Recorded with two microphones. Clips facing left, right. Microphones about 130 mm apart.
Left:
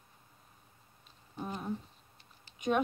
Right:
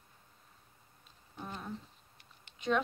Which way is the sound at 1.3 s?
15° left (ahead or behind).